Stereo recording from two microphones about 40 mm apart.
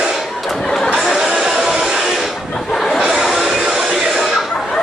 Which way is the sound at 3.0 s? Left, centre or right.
Centre.